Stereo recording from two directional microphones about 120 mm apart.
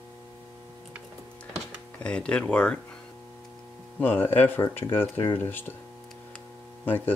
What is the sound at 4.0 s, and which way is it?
Speech, 15° left (ahead or behind).